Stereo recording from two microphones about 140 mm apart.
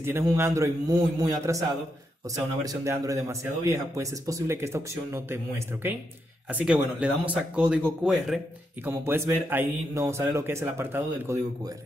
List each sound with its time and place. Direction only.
0.0 s a man's voice: 20° right (ahead or behind)
8.8 s a man's voice: 15° right (ahead or behind)